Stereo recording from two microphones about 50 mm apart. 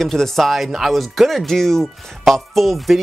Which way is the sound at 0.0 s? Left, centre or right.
Centre.